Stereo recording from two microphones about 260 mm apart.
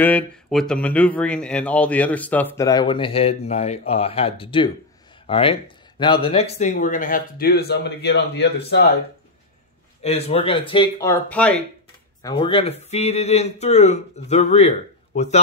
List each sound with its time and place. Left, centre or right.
0.0 s speech: centre; by 8.9 s left
10.0 s speech: left; by 11.6 s centre
12.2 s speech: centre